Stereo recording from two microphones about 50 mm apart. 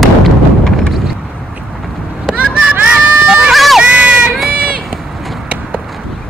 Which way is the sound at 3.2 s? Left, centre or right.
Centre.